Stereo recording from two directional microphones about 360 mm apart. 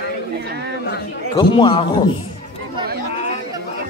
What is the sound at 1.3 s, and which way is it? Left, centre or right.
Speech, centre.